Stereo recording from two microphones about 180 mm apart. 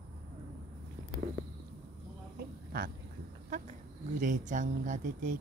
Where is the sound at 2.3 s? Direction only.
55° right (ahead or behind).